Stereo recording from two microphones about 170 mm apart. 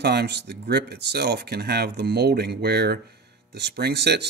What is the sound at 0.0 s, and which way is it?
Speech, 75° right (ahead or behind).